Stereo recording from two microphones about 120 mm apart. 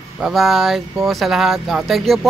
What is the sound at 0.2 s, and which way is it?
Speech, centre (ahead or behind).